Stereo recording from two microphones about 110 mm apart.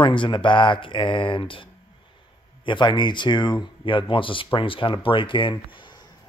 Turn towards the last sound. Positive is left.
turn(degrees=45)  # may be behind; listen again after turning